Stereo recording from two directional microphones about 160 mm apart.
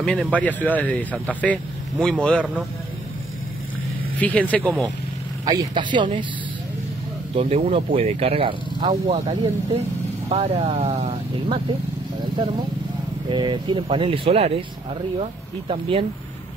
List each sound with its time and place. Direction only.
0.0 s speech: 5° left (ahead or behind)
4.2 s speech: 10° left (ahead or behind)
5.4 s speech: 25° right (ahead or behind)
7.3 s speech: 40° right (ahead or behind)
13.3 s speech: 30° right (ahead or behind)
15.7 s speech: 35° right (ahead or behind)